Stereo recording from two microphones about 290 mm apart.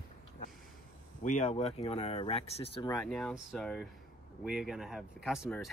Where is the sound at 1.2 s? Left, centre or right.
Left.